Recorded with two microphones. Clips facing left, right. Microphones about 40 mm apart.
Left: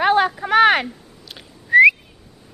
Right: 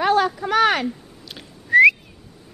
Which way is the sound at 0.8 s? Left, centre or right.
Centre.